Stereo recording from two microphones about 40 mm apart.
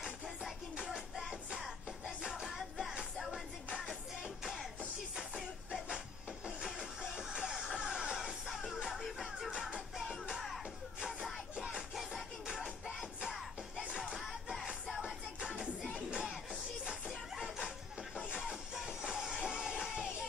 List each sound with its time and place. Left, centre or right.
0.0 s music: centre
2.4 s music: centre
4.4 s music: centre
6.8 s music: centre
10.3 s music: centre
11.0 s music: centre
13.8 s music: right
16.8 s music: centre
17.4 s a sound: centre
18.3 s music: centre